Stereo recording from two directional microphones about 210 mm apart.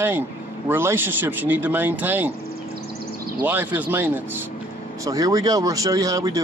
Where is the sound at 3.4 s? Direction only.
10° right (ahead or behind).